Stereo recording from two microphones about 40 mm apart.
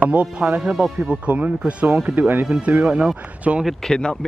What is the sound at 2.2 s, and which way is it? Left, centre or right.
Speech, right.